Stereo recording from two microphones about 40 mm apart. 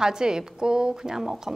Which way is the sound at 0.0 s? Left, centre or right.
Centre.